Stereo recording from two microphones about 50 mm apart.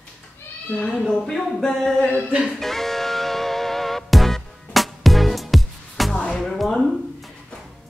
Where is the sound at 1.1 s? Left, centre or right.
Centre.